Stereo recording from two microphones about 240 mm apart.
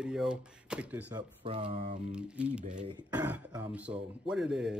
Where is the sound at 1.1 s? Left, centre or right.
Right.